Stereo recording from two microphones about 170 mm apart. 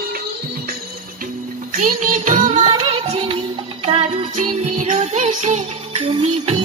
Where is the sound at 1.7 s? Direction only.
50° right (ahead or behind).